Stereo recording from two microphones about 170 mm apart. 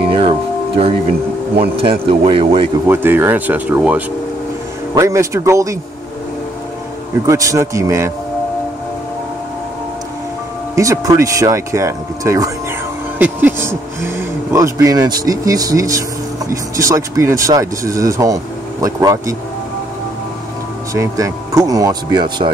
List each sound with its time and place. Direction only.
0.1 s music: 35° right (ahead or behind)
1.8 s speech: 35° right (ahead or behind)
2.9 s speech: 15° right (ahead or behind)
7.2 s speech: 20° right (ahead or behind)
10.8 s speech: 20° right (ahead or behind)
20.9 s speech: 20° right (ahead or behind)